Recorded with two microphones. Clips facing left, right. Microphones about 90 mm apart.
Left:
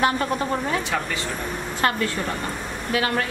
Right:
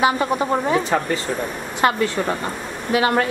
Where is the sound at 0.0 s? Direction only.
10° right (ahead or behind).